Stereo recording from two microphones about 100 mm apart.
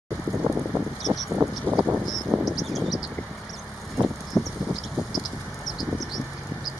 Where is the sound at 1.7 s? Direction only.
15° right (ahead or behind).